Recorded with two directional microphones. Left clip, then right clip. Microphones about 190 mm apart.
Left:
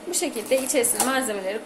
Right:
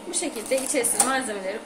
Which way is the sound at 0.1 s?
25° left (ahead or behind).